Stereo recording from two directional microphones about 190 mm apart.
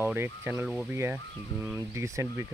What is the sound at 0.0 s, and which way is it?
Speech, 10° right (ahead or behind).